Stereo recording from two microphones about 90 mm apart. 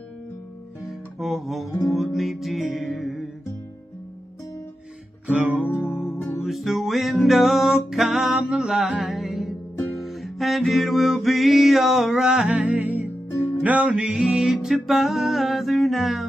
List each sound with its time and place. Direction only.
0.8 s guitar: centre (ahead or behind)
1.9 s music: centre (ahead or behind)
5.3 s music: 15° right (ahead or behind)
5.9 s music: 5° right (ahead or behind)